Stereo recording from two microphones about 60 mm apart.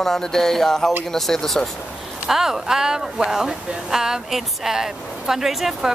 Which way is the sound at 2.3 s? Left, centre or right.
Centre.